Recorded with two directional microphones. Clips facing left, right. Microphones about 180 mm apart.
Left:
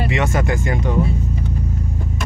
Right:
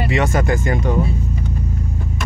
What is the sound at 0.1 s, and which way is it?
Speech, 40° right (ahead or behind).